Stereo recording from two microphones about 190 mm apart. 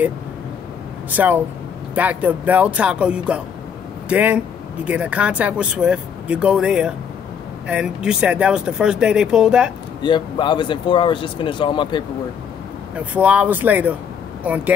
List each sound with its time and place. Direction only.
1.1 s speech: 10° right (ahead or behind)
10.0 s speech: 25° left (ahead or behind)
12.9 s speech: 5° right (ahead or behind)